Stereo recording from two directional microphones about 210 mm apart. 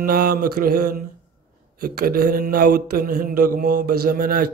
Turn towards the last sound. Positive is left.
turn(degrees=-45)  # may be behind; listen again after turning